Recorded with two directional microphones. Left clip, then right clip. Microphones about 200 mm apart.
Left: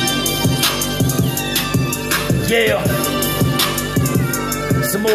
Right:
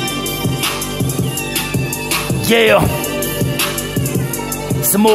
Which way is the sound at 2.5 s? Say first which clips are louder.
Right 5 dB; 30° right (ahead or behind).